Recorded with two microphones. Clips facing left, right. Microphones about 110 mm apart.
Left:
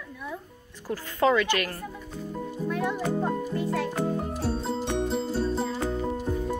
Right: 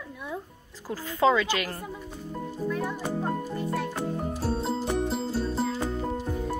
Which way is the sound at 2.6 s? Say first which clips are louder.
Left 2 dB; 70° left (ahead or behind).